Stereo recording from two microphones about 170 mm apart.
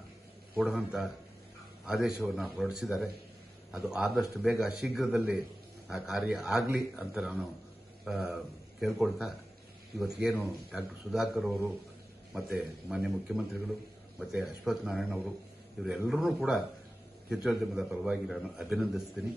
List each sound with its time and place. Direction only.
0.6 s a man's voice: 5° right (ahead or behind)